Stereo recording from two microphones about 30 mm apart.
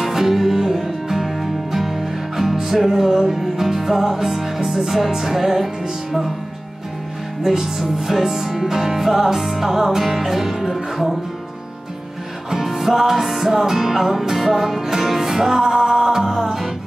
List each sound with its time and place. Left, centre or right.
0.0 s music: centre
7.4 s music: centre
12.6 s music: centre
15.6 s music: right